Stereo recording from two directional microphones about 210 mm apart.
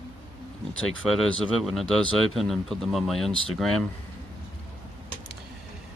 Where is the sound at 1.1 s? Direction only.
Centre (ahead or behind).